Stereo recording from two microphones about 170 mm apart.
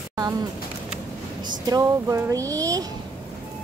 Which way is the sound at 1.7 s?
20° right (ahead or behind).